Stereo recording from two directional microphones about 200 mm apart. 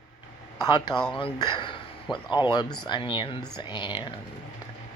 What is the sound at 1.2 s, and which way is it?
Speech, 25° left (ahead or behind).